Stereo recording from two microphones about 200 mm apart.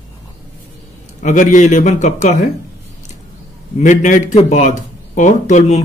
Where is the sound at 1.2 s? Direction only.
35° left (ahead or behind).